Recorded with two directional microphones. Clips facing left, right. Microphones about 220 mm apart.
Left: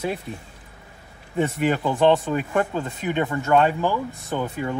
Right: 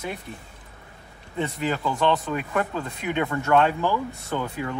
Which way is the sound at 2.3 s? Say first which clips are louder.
Left 3 dB; 30° left (ahead or behind).